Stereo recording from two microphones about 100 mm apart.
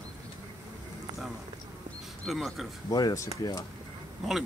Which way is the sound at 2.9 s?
35° left (ahead or behind).